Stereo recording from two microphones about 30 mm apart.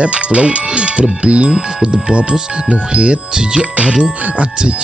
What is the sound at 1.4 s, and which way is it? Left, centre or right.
Speech, right.